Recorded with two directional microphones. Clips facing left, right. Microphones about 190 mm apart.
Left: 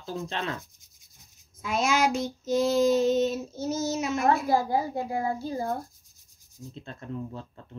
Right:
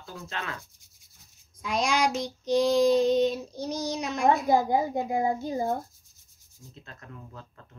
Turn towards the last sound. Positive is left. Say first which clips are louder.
# left 6 dB
turn(degrees=30)  # may be behind; listen again after turning